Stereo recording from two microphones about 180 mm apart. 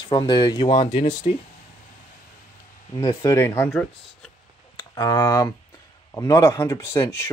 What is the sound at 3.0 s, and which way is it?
Speech, 15° left (ahead or behind).